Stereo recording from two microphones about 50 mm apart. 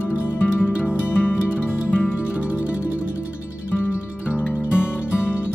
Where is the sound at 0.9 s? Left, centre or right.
Left.